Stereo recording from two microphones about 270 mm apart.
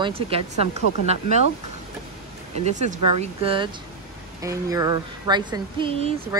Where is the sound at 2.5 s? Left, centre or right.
Right.